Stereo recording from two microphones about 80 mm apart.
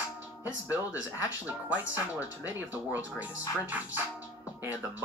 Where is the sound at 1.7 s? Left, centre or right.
Centre.